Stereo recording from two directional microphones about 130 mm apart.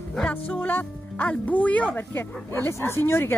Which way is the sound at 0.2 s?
10° left (ahead or behind).